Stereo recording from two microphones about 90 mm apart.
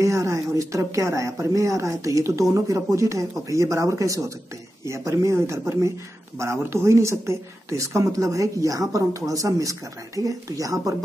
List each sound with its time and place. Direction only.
0.0 s speech: 35° right (ahead or behind)